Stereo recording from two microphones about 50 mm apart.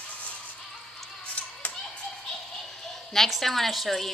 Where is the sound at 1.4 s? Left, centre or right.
Left.